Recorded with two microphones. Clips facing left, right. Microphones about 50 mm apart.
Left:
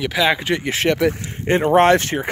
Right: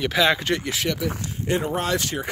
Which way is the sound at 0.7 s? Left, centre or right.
Left.